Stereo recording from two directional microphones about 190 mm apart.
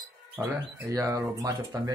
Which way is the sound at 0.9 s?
15° right (ahead or behind).